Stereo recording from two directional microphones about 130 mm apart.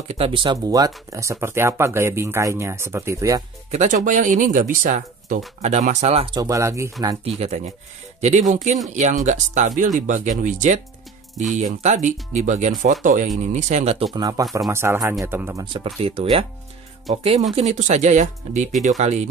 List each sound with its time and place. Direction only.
0.1 s speech: 45° right (ahead or behind)
0.7 s speech: 30° right (ahead or behind)
3.7 s speech: 75° right (ahead or behind); by 5.4 s 90° right
5.6 s speech: 65° right (ahead or behind)
6.3 s speech: 25° right (ahead or behind)
7.2 s speech: 55° right (ahead or behind); by 13.3 s 75° right (ahead or behind)
13.5 s speech: 65° right (ahead or behind)
14.1 s speech: 30° right (ahead or behind)
15.6 s speech: 40° right (ahead or behind)
16.0 s speech: 50° right (ahead or behind)